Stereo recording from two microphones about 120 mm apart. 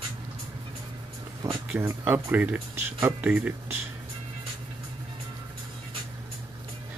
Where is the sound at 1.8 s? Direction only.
15° right (ahead or behind).